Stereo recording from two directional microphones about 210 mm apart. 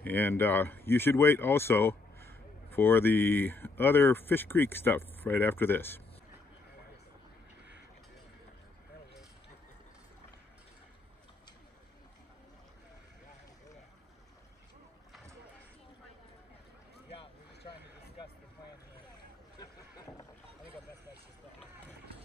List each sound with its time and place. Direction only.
0.0 s speech: 10° left (ahead or behind)
19.6 s rowboat: 20° left (ahead or behind)